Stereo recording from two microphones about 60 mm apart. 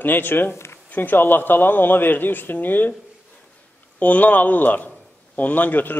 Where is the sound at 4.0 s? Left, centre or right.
Left.